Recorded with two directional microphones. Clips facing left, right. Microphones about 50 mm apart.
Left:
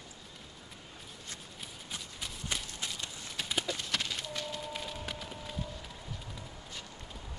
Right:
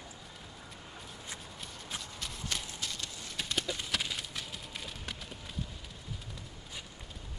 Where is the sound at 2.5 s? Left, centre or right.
Centre.